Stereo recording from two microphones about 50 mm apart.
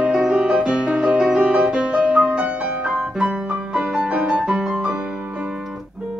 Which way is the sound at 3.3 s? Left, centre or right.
Right.